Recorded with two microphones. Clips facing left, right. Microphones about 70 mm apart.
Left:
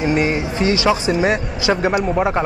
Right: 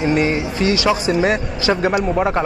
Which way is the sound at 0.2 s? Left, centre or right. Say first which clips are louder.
Even; left.